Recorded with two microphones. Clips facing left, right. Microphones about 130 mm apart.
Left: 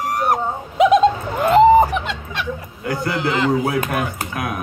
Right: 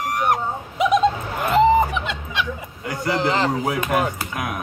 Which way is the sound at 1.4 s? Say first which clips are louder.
Left 5 dB; 30° left (ahead or behind).